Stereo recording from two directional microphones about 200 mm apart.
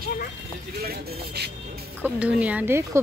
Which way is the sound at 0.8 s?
50° right (ahead or behind).